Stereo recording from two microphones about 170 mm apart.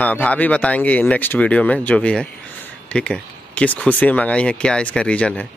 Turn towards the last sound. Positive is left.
turn(degrees=5)  # may be behind; listen again after turning